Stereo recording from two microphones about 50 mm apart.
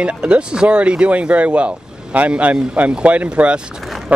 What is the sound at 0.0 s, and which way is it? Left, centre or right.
Speech, right.